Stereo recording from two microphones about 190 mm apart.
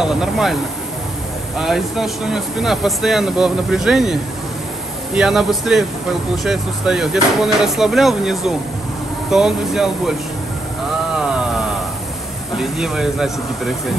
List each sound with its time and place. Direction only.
0.0 s speech: 5° right (ahead or behind)
1.6 s speech: centre (ahead or behind)
11.1 s a sound: 5° right (ahead or behind)
12.5 s speech: centre (ahead or behind)